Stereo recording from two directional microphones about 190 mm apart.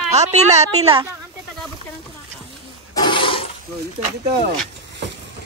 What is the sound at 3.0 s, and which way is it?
Toilet flush, 25° left (ahead or behind).